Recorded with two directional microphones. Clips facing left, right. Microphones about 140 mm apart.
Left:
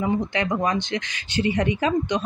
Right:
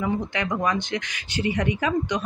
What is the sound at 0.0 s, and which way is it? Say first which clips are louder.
Speech: left 2 dB; 25° left (ahead or behind).